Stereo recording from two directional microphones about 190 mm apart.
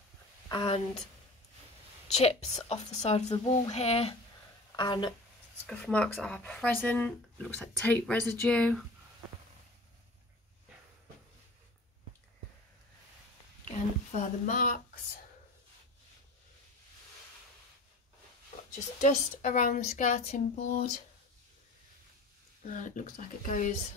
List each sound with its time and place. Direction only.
0.5 s a woman's voice: 30° left (ahead or behind)
2.1 s speech: 35° left (ahead or behind)
5.7 s speech: 5° left (ahead or behind)
13.7 s speech: 40° left (ahead or behind)
18.9 s speech: 40° left (ahead or behind)
22.7 s speech: 40° left (ahead or behind)